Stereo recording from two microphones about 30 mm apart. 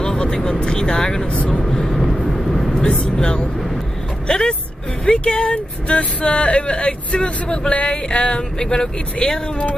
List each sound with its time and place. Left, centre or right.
0.0 s vehicle: left
0.9 s speech: left
1.7 s vehicle: centre
2.0 s vehicle: centre
3.1 s vehicle: left
4.3 s speech: left
9.2 s speech: left